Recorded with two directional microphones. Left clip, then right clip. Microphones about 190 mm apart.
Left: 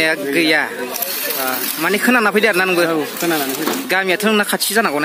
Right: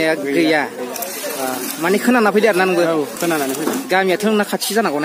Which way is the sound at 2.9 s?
15° right (ahead or behind).